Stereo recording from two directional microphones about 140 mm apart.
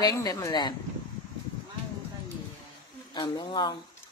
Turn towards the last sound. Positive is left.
turn(degrees=30)  # may be behind; listen again after turning